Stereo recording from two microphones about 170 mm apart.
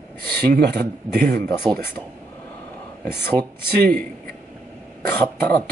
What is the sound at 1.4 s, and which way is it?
Speech, 15° left (ahead or behind).